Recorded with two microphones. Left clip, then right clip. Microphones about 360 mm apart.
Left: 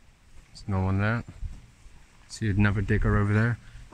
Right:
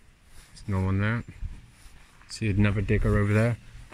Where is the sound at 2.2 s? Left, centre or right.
Centre.